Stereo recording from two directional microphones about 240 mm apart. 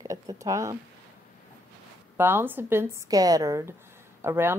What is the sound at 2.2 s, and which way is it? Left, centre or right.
Speech, centre.